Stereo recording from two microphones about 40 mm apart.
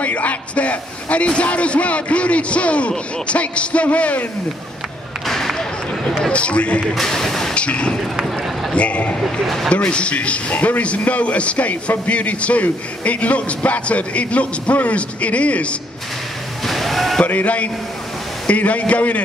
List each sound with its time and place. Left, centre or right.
0.0 s a man's voice: left
5.2 s a sound: centre
6.3 s a man's voice: left
6.9 s speech: centre
7.5 s a man's voice: left
9.2 s a man's voice: centre
9.7 s a man's voice: left
16.6 s a sound: centre
17.3 s a man's voice: left